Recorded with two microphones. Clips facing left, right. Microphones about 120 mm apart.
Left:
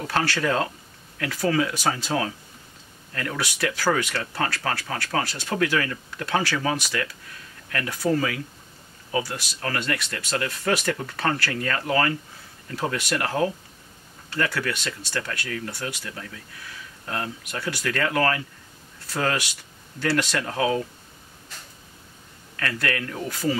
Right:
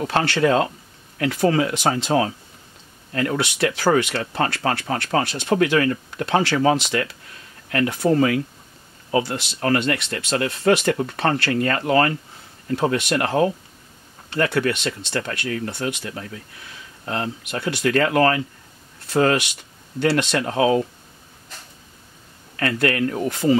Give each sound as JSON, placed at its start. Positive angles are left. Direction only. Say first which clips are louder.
{"t": 0.0, "sound": "speech", "louder": "right 5 dB", "side_deg": -25}
{"t": 22.6, "sound": "speech", "louder": "right 7 dB", "side_deg": -25}